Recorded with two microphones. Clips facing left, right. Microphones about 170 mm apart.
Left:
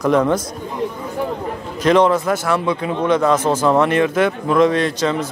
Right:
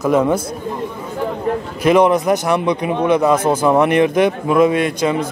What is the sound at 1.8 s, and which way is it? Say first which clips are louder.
A man's voice: right 2 dB; 10° right (ahead or behind).